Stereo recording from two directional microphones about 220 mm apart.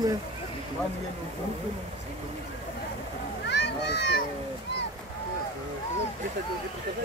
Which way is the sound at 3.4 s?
50° left (ahead or behind).